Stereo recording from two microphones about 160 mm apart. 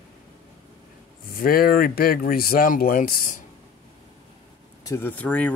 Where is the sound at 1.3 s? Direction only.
65° left (ahead or behind).